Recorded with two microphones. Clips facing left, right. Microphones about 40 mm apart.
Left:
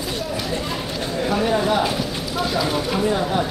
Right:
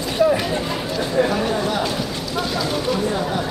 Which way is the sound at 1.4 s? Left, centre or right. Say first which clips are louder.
Left 2 dB; centre.